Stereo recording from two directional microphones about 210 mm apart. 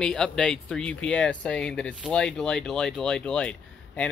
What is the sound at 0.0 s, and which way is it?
Speech, 5° left (ahead or behind).